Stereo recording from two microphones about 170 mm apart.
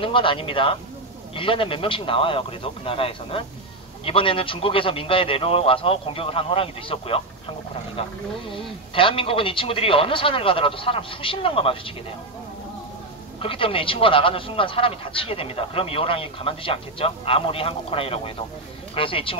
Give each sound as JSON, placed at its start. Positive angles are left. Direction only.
{"t": 0.0, "sound": "speech", "side_deg": 30}
{"t": 13.4, "sound": "speech", "side_deg": 30}